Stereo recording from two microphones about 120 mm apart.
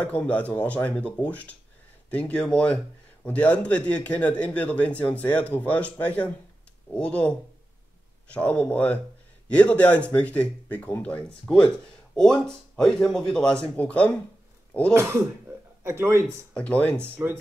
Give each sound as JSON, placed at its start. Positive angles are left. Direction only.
{"t": 0.0, "sound": "a man's voice", "side_deg": 10}
{"t": 15.0, "sound": "speech", "side_deg": -25}
{"t": 16.5, "sound": "a man's voice", "side_deg": 10}